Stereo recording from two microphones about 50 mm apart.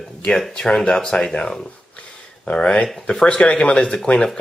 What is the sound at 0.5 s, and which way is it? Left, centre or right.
Speech, centre.